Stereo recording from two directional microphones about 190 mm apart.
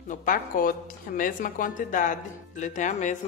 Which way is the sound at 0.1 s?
45° left (ahead or behind).